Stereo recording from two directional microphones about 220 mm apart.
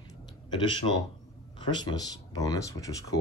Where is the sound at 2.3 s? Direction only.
15° left (ahead or behind).